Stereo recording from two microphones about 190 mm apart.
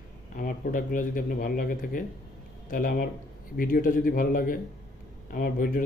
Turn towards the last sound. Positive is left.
turn(degrees=45)  # may be behind; listen again after turning